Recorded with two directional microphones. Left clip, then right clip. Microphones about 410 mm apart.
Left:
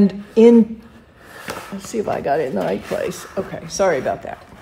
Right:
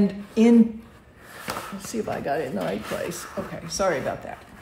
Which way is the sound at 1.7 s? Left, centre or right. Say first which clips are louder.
Left 11 dB; centre.